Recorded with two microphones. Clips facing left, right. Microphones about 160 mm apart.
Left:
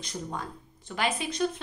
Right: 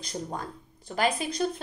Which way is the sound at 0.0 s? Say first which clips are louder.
Right 1 dB; 40° right (ahead or behind).